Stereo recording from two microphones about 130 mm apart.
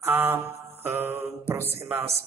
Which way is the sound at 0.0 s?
15° right (ahead or behind).